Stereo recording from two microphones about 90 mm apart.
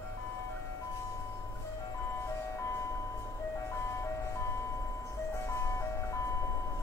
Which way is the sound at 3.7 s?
30° left (ahead or behind).